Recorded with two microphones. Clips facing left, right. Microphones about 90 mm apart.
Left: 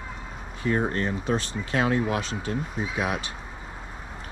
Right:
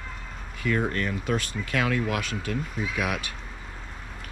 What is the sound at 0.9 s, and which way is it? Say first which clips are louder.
Speech: left 1 dB; 25° left (ahead or behind).